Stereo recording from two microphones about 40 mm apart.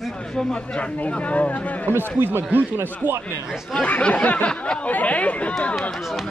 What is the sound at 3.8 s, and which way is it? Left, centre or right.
Speech, left.